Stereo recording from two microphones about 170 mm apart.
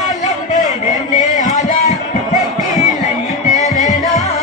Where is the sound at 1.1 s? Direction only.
45° left (ahead or behind).